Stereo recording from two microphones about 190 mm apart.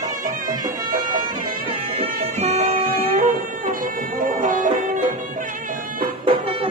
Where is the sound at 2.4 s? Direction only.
35° right (ahead or behind).